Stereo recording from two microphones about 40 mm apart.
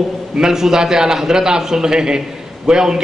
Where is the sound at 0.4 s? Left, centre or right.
Centre.